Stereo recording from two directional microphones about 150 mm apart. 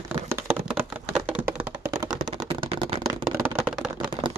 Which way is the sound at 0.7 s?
5° right (ahead or behind).